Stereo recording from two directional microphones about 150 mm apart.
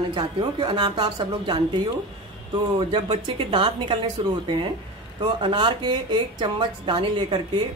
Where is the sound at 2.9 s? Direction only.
35° right (ahead or behind).